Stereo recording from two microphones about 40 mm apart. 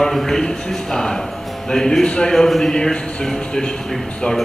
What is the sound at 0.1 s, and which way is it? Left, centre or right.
A man's voice, centre.